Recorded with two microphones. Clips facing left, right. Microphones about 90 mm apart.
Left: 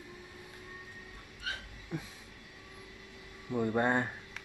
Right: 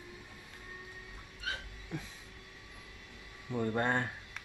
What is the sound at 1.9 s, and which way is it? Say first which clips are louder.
Speech: left 2 dB; 10° left (ahead or behind).